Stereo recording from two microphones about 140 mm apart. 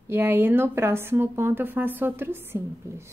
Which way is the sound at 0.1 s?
15° right (ahead or behind).